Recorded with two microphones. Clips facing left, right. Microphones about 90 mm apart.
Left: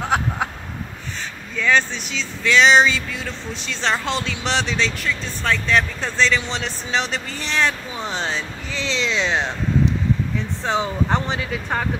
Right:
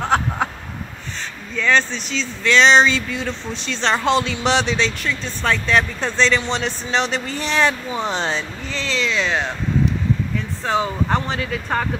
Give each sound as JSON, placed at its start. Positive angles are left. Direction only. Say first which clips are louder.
{"t": 0.1, "sound": "a sound", "louder": "right 2 dB", "side_deg": 10}
{"t": 1.6, "sound": "speech", "louder": "right 1 dB", "side_deg": 10}
{"t": 8.7, "sound": "speech", "louder": "right 1 dB", "side_deg": 20}
{"t": 10.6, "sound": "speech", "louder": "right 1 dB", "side_deg": 20}